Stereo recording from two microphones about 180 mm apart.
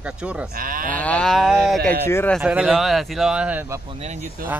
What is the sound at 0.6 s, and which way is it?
Speech, 50° right (ahead or behind).